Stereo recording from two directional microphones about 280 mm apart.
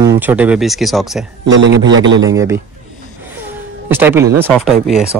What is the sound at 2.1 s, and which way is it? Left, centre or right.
Speech, centre.